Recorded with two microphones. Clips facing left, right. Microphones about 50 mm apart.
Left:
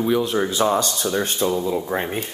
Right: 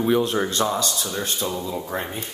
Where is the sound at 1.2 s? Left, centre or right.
Left.